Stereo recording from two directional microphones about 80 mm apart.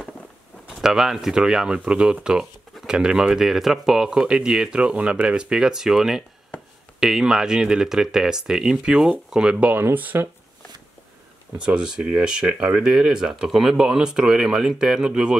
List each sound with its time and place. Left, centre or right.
0.7 s speech: centre
9.8 s speech: right
11.6 s speech: centre